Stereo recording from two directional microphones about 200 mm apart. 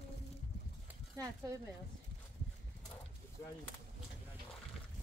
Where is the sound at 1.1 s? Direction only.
15° right (ahead or behind).